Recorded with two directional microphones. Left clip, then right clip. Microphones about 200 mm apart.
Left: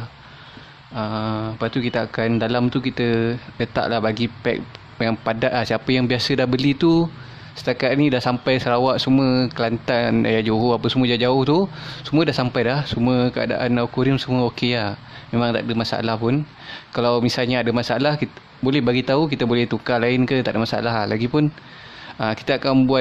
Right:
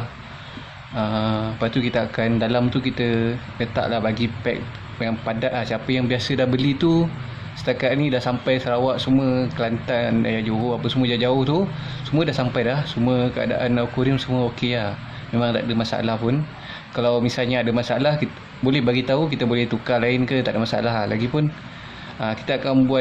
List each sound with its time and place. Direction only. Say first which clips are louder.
0.9 s speech: right 2 dB; 25° left (ahead or behind)